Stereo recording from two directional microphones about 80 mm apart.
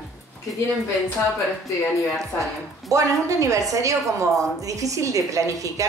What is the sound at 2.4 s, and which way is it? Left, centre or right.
A woman's voice, right.